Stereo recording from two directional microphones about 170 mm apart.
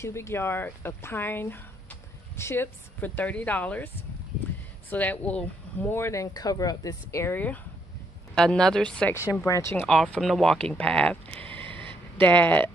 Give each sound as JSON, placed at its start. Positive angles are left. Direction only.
{"t": 0.0, "sound": "speech", "side_deg": 15}
{"t": 9.3, "sound": "speech", "side_deg": 20}
{"t": 10.1, "sound": "speech", "side_deg": 0}